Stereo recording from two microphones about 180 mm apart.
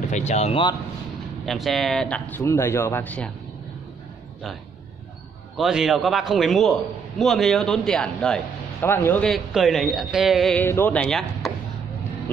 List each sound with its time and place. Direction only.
0.1 s speech: 40° left (ahead or behind)
1.4 s speech: centre (ahead or behind)
5.6 s a man's voice: centre (ahead or behind)